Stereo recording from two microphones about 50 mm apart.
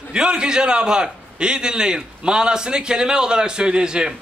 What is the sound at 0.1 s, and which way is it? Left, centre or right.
A man's voice, centre.